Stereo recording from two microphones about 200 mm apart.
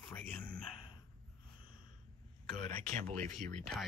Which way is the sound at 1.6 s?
45° right (ahead or behind).